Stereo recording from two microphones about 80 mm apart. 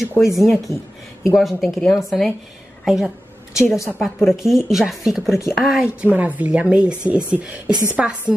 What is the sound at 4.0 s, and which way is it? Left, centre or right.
Speech, centre.